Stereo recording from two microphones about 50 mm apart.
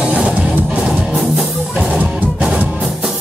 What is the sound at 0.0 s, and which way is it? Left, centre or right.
Music, right.